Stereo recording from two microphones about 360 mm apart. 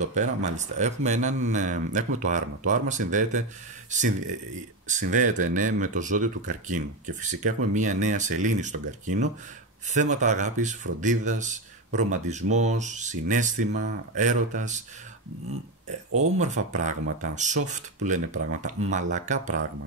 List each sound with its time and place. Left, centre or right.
0.1 s speech: centre
16.3 s speech: centre